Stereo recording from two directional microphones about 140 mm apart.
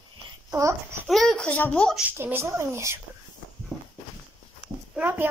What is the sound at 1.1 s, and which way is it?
Speech, centre (ahead or behind).